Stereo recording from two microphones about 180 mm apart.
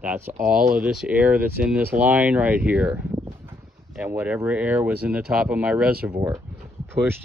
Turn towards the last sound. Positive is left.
turn(degrees=-10)  # may be behind; listen again after turning